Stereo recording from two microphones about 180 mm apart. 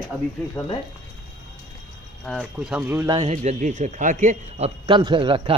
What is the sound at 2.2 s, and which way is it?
Speech, centre (ahead or behind).